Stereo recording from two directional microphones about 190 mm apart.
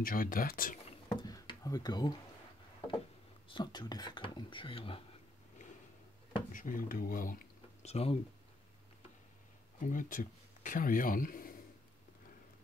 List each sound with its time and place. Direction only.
0.0 s speech: 50° left (ahead or behind)
1.0 s a sound: 20° left (ahead or behind)
3.4 s speech: 25° left (ahead or behind)
6.5 s speech: 45° left (ahead or behind)
7.8 s speech: 30° left (ahead or behind)
9.8 s speech: 45° left (ahead or behind)